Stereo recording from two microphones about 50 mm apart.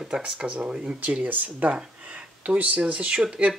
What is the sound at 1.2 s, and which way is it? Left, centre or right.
Speech, right.